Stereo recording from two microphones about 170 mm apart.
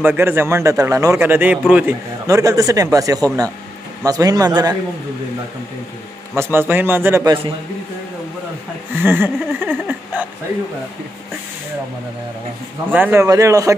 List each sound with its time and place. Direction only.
0.0 s a man's voice: 10° right (ahead or behind)
2.2 s speech: 20° right (ahead or behind)
6.3 s a man's voice: 15° right (ahead or behind)
9.0 s a man's voice: 10° right (ahead or behind)
12.9 s a man's voice: 10° right (ahead or behind)